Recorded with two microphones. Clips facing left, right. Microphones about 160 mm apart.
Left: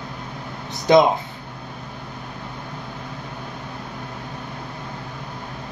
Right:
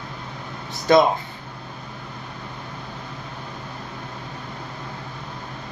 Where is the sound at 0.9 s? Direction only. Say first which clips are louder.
Left 2 dB; 15° left (ahead or behind).